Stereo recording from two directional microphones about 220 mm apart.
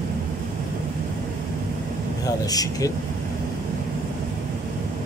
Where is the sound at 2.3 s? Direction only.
15° left (ahead or behind).